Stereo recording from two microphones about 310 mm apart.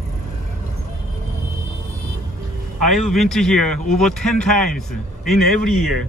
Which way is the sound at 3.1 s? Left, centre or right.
Centre.